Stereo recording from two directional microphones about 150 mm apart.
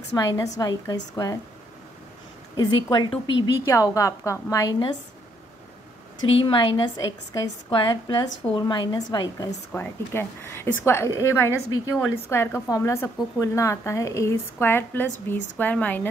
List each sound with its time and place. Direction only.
0.1 s speech: 25° left (ahead or behind)
2.5 s speech: 30° left (ahead or behind)
6.4 s a woman's voice: 35° left (ahead or behind)
9.7 s a woman's voice: 15° left (ahead or behind)